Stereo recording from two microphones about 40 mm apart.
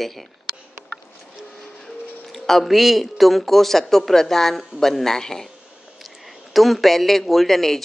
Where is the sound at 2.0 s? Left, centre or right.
Left.